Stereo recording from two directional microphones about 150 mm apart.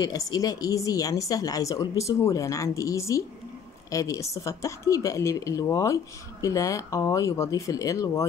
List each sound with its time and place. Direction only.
0.0 s speech: 25° left (ahead or behind)